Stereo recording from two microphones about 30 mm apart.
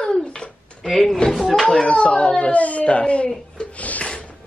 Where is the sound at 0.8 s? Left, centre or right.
Centre.